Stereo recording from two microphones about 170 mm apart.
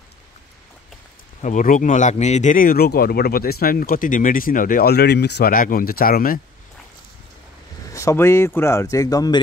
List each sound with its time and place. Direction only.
1.4 s speech: 50° left (ahead or behind)
7.9 s a man's voice: 15° left (ahead or behind)